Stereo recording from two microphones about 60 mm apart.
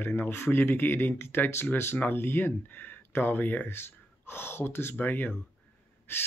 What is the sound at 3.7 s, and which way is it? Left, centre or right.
Speech, left.